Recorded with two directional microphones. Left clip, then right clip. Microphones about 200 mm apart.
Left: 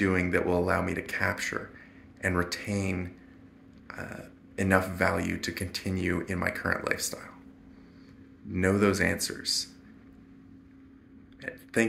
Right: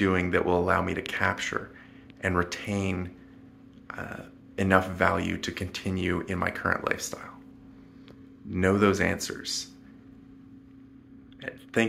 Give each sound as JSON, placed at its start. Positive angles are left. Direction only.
{"t": 0.0, "sound": "speech", "side_deg": -10}
{"t": 8.5, "sound": "speech", "side_deg": -10}